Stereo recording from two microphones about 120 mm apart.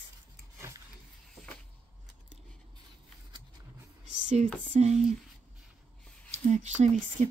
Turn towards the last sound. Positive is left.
turn(degrees=-90)